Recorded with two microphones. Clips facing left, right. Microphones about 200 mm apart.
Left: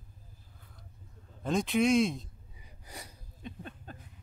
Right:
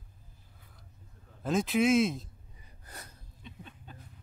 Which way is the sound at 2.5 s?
10° left (ahead or behind).